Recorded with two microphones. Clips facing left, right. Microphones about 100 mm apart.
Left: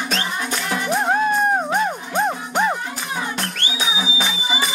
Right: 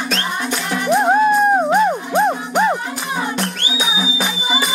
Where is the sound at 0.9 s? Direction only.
15° right (ahead or behind).